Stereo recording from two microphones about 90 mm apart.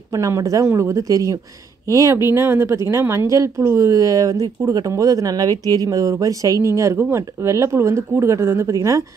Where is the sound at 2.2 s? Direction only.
25° right (ahead or behind).